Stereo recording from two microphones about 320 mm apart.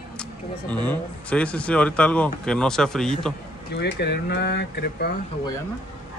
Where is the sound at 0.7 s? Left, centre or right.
Centre.